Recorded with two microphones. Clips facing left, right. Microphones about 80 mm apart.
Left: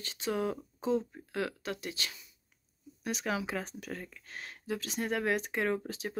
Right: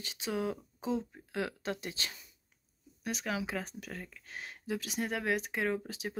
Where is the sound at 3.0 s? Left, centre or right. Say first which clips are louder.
Left 2 dB; centre.